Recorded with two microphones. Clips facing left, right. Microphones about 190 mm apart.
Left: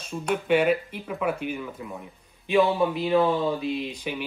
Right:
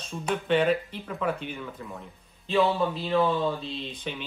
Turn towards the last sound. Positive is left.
turn(degrees=10)  # may be behind; listen again after turning